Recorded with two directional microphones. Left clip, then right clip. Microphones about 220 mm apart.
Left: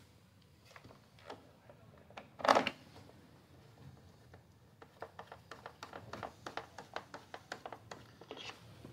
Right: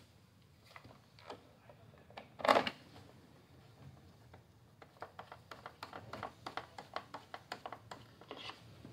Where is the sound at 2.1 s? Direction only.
Centre (ahead or behind).